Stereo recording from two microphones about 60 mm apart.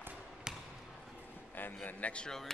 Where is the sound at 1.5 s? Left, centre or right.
Left.